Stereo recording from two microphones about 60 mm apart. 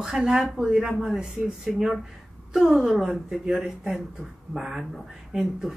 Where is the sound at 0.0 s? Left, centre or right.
Centre.